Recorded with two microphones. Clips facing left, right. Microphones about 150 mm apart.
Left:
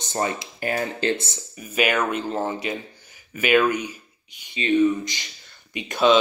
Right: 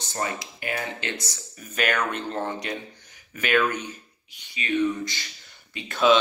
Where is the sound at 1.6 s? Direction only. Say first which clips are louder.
Left 4 dB; 10° left (ahead or behind).